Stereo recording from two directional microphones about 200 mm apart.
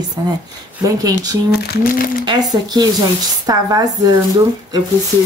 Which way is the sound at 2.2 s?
20° right (ahead or behind).